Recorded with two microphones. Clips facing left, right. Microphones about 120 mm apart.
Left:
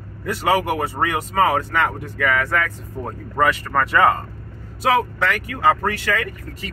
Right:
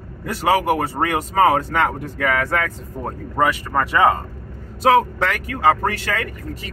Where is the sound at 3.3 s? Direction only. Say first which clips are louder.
Even; 15° right (ahead or behind).